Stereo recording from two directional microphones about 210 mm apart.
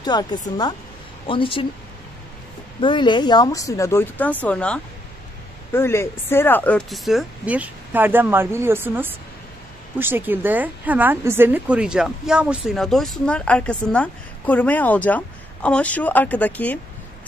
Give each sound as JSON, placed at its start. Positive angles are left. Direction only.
{"t": 0.0, "sound": "speech", "side_deg": 20}
{"t": 2.8, "sound": "a woman's voice", "side_deg": 25}